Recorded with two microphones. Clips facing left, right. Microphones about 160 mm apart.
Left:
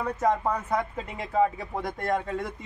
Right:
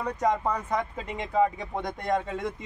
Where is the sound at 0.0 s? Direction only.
Centre (ahead or behind).